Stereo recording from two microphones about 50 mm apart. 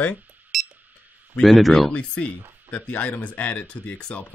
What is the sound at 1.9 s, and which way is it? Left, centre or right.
Speech, left.